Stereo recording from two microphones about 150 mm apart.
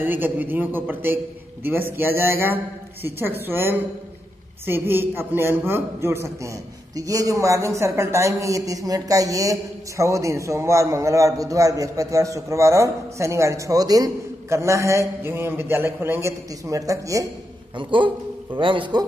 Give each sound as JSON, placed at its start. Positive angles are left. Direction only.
{"t": 0.0, "sound": "a man's voice", "side_deg": -10}
{"t": 17.7, "sound": "speech", "side_deg": -35}